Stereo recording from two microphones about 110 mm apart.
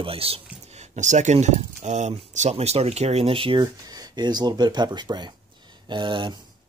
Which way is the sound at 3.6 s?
35° right (ahead or behind).